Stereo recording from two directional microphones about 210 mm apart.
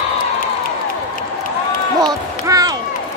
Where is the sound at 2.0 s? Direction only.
20° right (ahead or behind).